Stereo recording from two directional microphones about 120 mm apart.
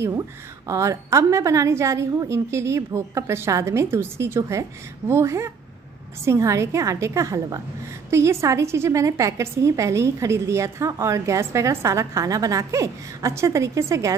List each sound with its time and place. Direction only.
0.7 s a woman's voice: 25° right (ahead or behind)